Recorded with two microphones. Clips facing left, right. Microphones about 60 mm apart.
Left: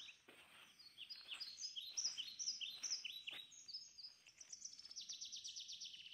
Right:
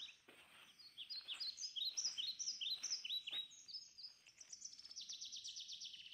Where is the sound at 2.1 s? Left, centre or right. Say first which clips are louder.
Right 3 dB; centre.